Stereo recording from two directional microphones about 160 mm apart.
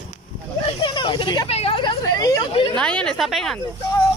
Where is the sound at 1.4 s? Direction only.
40° left (ahead or behind).